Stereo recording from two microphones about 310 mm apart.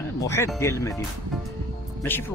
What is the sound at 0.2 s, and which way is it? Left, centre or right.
Speech, centre.